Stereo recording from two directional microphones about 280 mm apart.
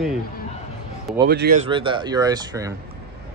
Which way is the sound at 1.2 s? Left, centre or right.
Right.